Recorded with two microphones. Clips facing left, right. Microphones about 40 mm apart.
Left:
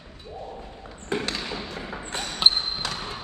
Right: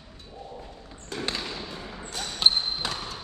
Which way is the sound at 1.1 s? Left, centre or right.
Left.